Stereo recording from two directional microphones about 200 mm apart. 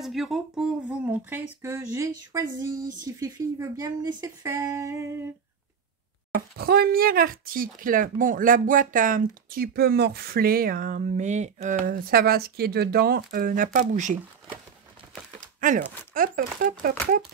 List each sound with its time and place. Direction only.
0.0 s speech: centre (ahead or behind)
6.6 s speech: 50° right (ahead or behind)
15.4 s a sound: 40° right (ahead or behind)
16.2 s speech: 45° right (ahead or behind)